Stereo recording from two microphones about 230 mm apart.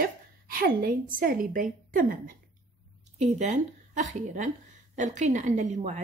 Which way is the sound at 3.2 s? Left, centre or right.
Right.